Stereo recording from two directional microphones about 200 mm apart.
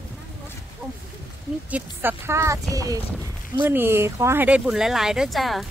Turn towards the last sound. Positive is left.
turn(degrees=0)  # may be behind; listen again after turning